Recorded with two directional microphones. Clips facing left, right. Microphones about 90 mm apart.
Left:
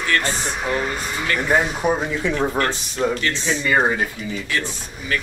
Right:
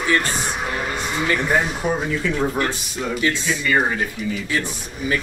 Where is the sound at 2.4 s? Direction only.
10° right (ahead or behind).